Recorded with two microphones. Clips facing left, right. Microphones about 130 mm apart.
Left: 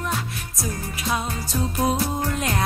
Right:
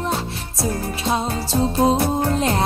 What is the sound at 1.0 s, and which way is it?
Music, 30° right (ahead or behind).